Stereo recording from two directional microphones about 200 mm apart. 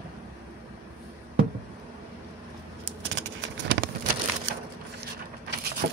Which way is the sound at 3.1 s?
60° right (ahead or behind).